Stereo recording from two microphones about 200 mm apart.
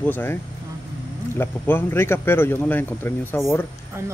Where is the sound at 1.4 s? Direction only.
10° left (ahead or behind).